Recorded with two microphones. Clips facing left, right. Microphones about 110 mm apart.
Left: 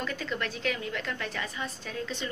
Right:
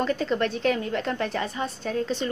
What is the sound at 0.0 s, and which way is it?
A woman's voice, 40° right (ahead or behind).